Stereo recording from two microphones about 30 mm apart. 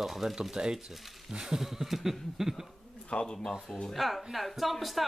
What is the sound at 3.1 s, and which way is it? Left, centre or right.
Speech, left.